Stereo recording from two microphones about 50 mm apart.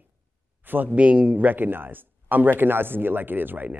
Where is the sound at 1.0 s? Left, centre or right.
Right.